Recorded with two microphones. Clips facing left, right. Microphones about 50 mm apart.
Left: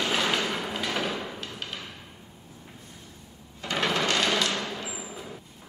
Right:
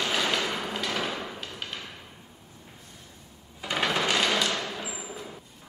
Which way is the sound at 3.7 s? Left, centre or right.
Centre.